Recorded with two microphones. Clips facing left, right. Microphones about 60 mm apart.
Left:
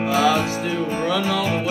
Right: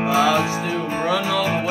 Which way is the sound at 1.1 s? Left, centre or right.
Centre.